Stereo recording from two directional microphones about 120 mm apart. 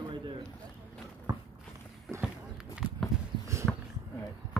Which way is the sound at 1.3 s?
25° right (ahead or behind).